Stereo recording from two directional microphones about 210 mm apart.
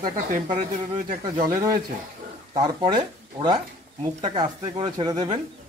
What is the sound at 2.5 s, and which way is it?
Speech, 20° right (ahead or behind).